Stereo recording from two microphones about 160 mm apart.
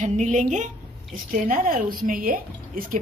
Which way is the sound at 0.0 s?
50° right (ahead or behind).